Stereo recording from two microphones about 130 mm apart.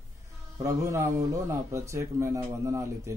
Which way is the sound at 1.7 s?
20° right (ahead or behind).